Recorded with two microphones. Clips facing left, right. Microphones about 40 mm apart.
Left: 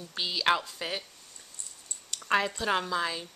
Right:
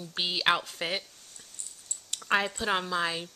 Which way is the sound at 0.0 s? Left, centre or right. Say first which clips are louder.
Right 1 dB; right.